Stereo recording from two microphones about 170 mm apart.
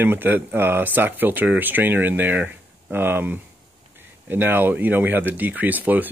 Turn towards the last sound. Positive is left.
turn(degrees=-10)  # may be behind; listen again after turning